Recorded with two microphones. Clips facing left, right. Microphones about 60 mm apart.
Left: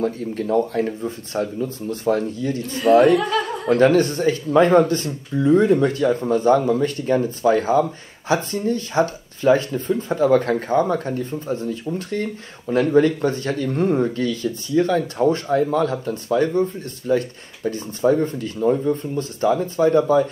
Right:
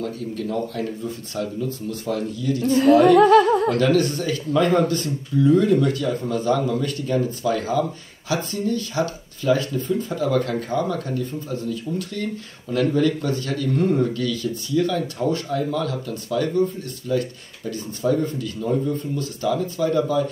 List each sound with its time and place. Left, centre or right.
0.0 s speech: left
2.6 s speech: right
3.6 s speech: left